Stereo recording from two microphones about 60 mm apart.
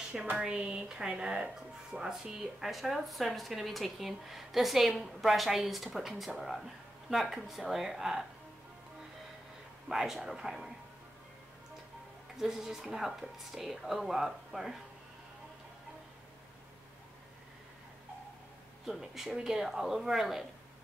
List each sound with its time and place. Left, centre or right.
0.4 s speech: centre
9.8 s speech: centre
12.4 s speech: centre
18.9 s speech: centre